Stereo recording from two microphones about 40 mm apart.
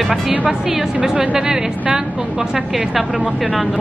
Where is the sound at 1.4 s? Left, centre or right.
Right.